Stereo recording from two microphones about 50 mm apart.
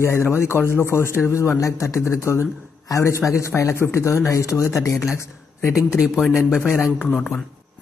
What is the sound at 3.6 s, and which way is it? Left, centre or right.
Speech, left.